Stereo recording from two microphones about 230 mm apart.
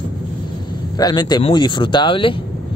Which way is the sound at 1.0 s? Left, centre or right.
Centre.